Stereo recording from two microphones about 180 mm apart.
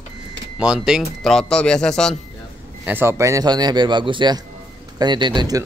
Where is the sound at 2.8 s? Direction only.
10° right (ahead or behind).